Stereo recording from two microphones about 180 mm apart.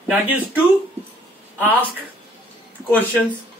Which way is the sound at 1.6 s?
10° right (ahead or behind).